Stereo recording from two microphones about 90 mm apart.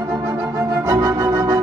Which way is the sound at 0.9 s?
40° right (ahead or behind).